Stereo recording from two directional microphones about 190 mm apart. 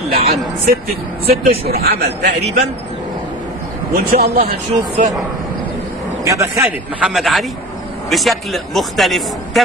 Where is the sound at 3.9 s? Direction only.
55° right (ahead or behind).